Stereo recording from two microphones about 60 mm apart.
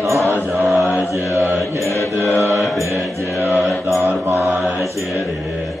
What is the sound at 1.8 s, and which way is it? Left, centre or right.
Mantra, left.